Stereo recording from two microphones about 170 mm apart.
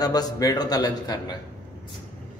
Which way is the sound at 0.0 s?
20° left (ahead or behind).